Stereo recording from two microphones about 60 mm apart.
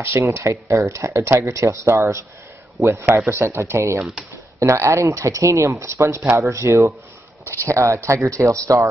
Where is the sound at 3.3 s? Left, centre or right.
Right.